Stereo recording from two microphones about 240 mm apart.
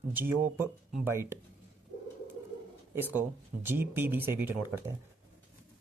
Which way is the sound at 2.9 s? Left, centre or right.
Centre.